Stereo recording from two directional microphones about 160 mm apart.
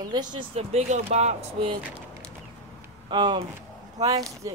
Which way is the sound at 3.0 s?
30° right (ahead or behind).